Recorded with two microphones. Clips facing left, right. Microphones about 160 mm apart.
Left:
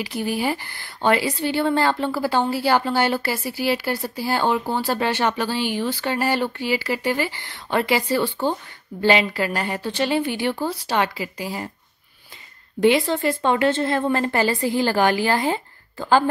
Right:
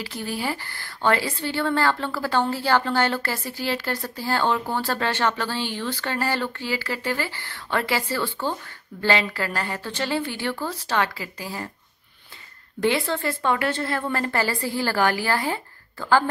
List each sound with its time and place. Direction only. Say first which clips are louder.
0.0 s a woman's voice: left 5 dB; 15° left (ahead or behind)
12.8 s a woman's voice: left 5 dB; 15° left (ahead or behind)